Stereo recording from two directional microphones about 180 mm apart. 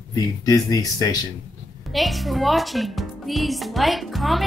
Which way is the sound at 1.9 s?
Centre (ahead or behind).